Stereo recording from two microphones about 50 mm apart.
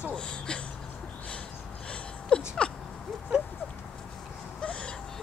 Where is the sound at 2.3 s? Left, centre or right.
Left.